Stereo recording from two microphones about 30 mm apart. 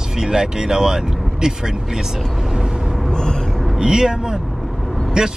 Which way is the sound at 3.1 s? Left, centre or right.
Left.